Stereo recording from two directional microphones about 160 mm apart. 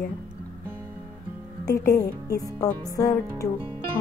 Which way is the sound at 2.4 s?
20° left (ahead or behind).